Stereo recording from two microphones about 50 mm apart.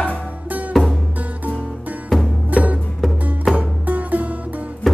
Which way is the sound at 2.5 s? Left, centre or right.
Right.